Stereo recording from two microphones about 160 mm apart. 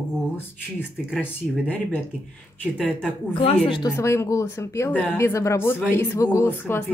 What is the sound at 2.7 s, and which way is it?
Speech, 5° left (ahead or behind).